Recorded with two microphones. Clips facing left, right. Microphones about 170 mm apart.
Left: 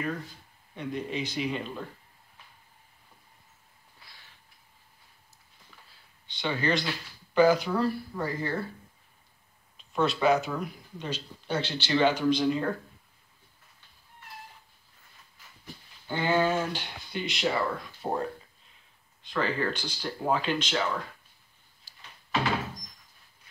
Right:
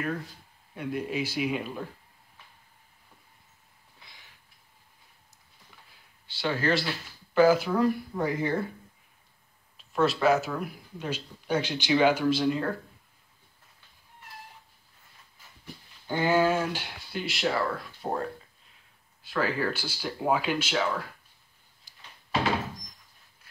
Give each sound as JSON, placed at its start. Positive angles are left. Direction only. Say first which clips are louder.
{"t": 0.7, "sound": "speech", "louder": "right 2 dB", "side_deg": -5}
{"t": 4.0, "sound": "a sound", "louder": "right 1 dB", "side_deg": -20}
{"t": 6.2, "sound": "speech", "louder": "right 1 dB", "side_deg": -5}
{"t": 9.8, "sound": "speech", "louder": "right 2 dB", "side_deg": 0}
{"t": 16.1, "sound": "speech", "louder": "right 2 dB", "side_deg": -10}
{"t": 21.9, "sound": "a sound", "louder": "left 1 dB", "side_deg": -20}